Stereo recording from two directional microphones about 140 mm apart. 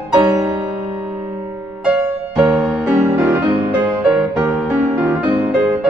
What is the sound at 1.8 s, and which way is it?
Music, 10° right (ahead or behind).